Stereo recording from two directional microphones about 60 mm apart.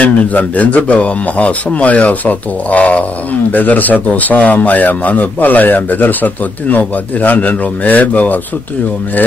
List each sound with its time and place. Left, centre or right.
0.0 s a man's voice: left